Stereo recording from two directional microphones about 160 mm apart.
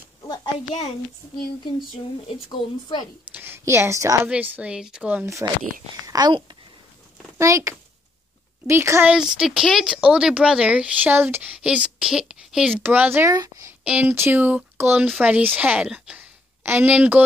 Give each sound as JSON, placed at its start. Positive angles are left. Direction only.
{"t": 3.3, "sound": "a woman's voice", "side_deg": -15}
{"t": 4.3, "sound": "speech", "side_deg": -10}
{"t": 6.0, "sound": "a child's voice", "side_deg": -25}
{"t": 9.1, "sound": "a woman's voice", "side_deg": -5}